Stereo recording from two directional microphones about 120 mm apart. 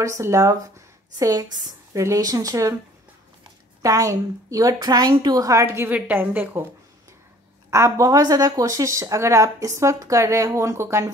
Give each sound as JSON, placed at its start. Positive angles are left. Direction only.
{"t": 0.0, "sound": "speech", "side_deg": -25}
{"t": 3.8, "sound": "speech", "side_deg": -30}
{"t": 5.9, "sound": "a woman's voice", "side_deg": -15}
{"t": 7.7, "sound": "speech", "side_deg": -25}